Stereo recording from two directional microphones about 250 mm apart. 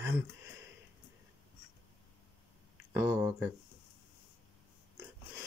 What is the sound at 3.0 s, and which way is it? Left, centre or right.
Speech, centre.